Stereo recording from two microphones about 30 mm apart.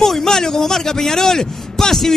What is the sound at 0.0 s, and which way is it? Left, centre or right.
A man's voice, centre.